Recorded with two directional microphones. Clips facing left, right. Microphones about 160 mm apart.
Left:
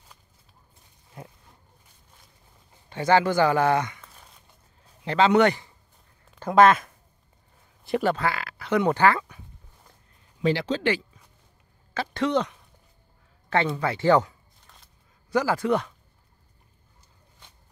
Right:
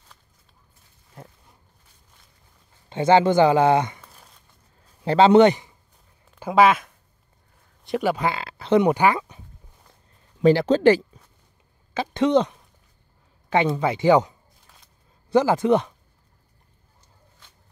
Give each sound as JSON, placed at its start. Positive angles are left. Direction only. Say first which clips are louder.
{"t": 1.1, "sound": "a sound", "louder": "left 1 dB", "side_deg": 0}
{"t": 2.9, "sound": "speech", "louder": "right 4 dB", "side_deg": -25}
{"t": 5.0, "sound": "speech", "louder": "right 5 dB", "side_deg": -30}
{"t": 6.4, "sound": "speech", "louder": "even", "side_deg": -5}
{"t": 8.2, "sound": "speech", "louder": "right 2 dB", "side_deg": -25}
{"t": 8.8, "sound": "speech", "louder": "right 2 dB", "side_deg": -15}
{"t": 10.4, "sound": "speech", "louder": "right 8 dB", "side_deg": -45}
{"t": 11.9, "sound": "speech", "louder": "right 5 dB", "side_deg": -20}